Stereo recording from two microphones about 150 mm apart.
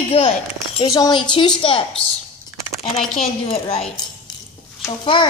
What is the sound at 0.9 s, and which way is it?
Speech, 25° left (ahead or behind).